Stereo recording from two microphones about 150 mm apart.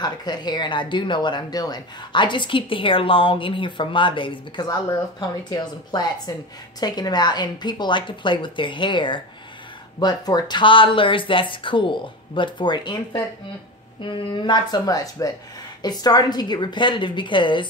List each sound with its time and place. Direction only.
0.0 s speech: 30° left (ahead or behind)